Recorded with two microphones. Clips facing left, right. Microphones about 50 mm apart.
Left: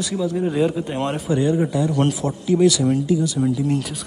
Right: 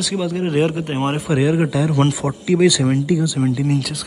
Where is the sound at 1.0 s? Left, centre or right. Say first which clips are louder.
Right 3 dB; right.